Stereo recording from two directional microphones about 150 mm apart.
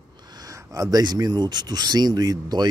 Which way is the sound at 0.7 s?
25° right (ahead or behind).